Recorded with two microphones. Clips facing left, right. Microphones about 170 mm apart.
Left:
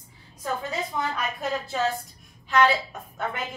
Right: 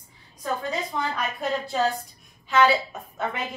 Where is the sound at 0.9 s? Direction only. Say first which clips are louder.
Right 1 dB; centre (ahead or behind).